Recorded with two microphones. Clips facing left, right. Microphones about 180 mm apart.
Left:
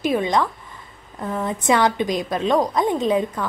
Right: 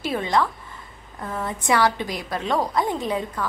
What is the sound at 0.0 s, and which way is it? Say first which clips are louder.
A woman's voice: left 3 dB; 15° left (ahead or behind).